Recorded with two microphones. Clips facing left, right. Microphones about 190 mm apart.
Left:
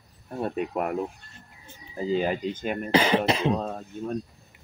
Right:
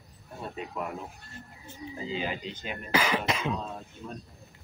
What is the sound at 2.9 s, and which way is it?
Cough, 30° left (ahead or behind).